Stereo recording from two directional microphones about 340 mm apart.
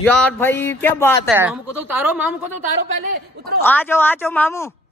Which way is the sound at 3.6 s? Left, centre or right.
Centre.